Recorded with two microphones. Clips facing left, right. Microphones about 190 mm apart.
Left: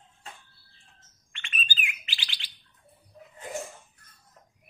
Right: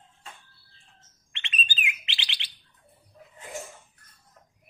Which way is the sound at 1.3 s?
20° right (ahead or behind).